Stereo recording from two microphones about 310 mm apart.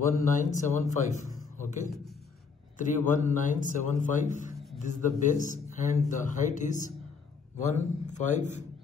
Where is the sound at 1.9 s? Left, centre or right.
Centre.